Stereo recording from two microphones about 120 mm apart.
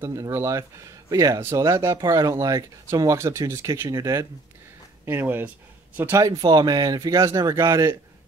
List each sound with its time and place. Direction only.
0.0 s speech: 25° right (ahead or behind)
5.0 s speech: 15° right (ahead or behind)
6.2 s speech: 30° right (ahead or behind)